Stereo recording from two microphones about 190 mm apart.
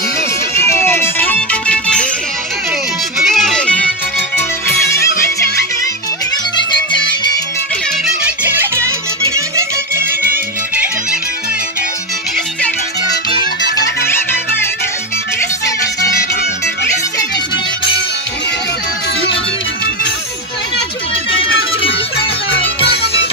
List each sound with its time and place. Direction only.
0.7 s music: 10° left (ahead or behind)
3.2 s music: centre (ahead or behind)
9.3 s music: 15° right (ahead or behind)
15.6 s music: 15° left (ahead or behind)